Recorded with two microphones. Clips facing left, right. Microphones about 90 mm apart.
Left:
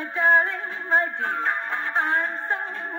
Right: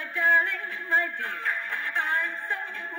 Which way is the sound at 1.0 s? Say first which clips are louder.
Left 5 dB; 50° left (ahead or behind).